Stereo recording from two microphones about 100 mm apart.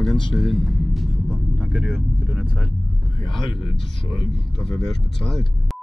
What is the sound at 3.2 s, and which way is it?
Speech, 55° left (ahead or behind).